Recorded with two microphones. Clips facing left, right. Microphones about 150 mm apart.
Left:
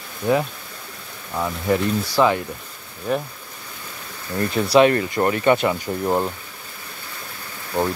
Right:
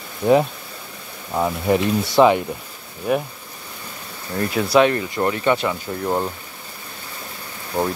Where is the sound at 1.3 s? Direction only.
25° right (ahead or behind).